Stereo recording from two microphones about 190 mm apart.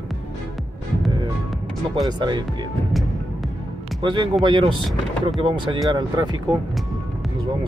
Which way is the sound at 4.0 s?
25° right (ahead or behind).